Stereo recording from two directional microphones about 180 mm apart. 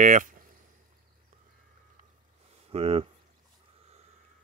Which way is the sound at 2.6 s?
35° right (ahead or behind).